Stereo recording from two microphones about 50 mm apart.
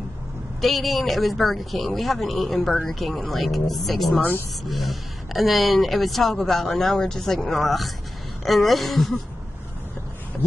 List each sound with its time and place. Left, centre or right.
0.6 s speech: centre